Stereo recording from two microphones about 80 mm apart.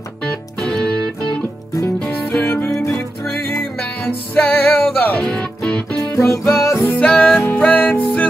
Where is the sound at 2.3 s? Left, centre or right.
Left.